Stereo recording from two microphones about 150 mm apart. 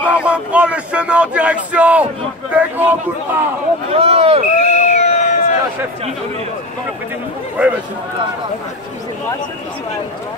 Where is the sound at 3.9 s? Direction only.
40° right (ahead or behind).